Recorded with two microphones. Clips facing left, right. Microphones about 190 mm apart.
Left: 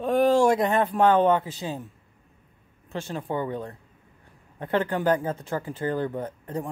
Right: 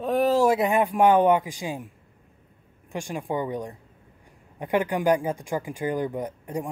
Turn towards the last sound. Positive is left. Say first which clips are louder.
# right 1 dB
turn(degrees=-15)  # may be behind; listen again after turning